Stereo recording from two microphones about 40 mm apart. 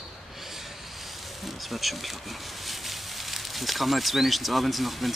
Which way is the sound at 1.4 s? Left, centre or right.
Centre.